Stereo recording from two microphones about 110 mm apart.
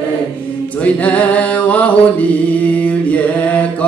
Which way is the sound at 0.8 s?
15° left (ahead or behind).